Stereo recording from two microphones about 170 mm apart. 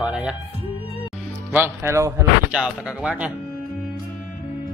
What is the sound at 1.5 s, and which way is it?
Speech, 15° right (ahead or behind).